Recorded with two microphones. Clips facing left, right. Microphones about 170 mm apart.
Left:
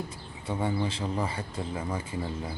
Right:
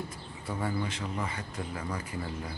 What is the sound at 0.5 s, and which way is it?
Speech, 25° left (ahead or behind).